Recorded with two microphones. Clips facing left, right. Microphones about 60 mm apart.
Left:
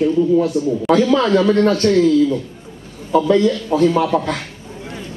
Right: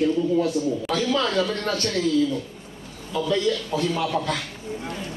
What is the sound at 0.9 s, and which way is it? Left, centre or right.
Speech, left.